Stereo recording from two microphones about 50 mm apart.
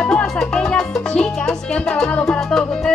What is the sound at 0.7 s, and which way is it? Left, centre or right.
Music, centre.